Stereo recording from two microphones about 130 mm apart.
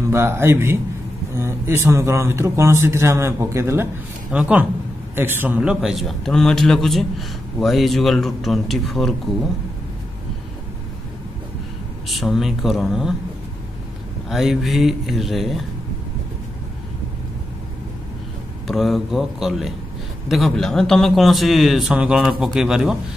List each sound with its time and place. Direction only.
0.1 s a man's voice: 20° right (ahead or behind)
5.6 s a man's voice: 5° right (ahead or behind)
12.1 s a man's voice: centre (ahead or behind)
14.3 s a man's voice: centre (ahead or behind)
18.7 s a man's voice: centre (ahead or behind)